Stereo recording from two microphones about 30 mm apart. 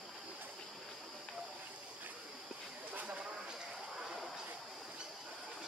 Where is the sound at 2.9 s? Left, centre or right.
Right.